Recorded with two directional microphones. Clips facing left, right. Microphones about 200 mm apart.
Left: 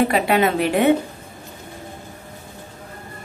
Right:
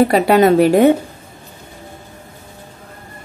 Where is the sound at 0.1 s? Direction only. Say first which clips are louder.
Right 7 dB; 40° right (ahead or behind).